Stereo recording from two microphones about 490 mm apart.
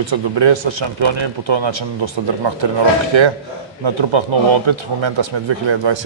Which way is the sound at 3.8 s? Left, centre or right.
Right.